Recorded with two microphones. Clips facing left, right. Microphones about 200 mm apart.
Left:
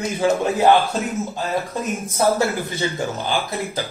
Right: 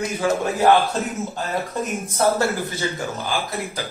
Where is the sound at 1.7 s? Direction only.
Centre (ahead or behind).